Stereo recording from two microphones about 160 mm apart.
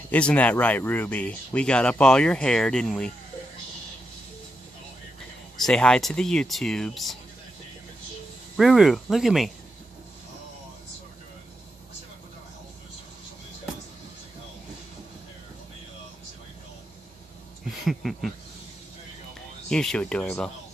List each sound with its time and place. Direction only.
0.1 s speech: 10° left (ahead or behind)
5.7 s speech: 5° left (ahead or behind)
8.5 s speech: centre (ahead or behind)
17.8 s speech: centre (ahead or behind)
19.7 s speech: 5° left (ahead or behind)